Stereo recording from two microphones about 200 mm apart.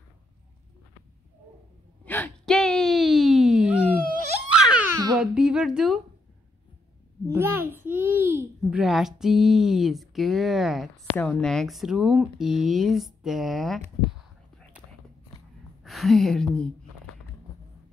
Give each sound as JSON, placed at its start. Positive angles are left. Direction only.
{"t": 2.0, "sound": "wail", "side_deg": 10}
{"t": 4.6, "sound": "babbling", "side_deg": -5}
{"t": 5.1, "sound": "humming", "side_deg": -5}
{"t": 7.3, "sound": "a child's voice", "side_deg": -10}
{"t": 15.8, "sound": "gasp", "side_deg": 0}